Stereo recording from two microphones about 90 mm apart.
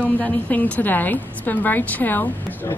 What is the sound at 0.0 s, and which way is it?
A woman's voice, 20° left (ahead or behind).